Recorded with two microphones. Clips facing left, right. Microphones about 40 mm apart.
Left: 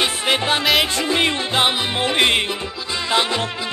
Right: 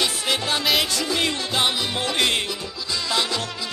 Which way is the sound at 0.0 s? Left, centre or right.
Left.